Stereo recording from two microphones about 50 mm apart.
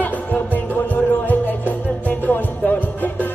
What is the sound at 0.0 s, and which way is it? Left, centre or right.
Music, left.